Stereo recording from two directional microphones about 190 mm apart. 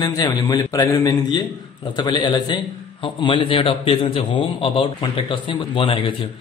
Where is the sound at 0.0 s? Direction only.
20° left (ahead or behind).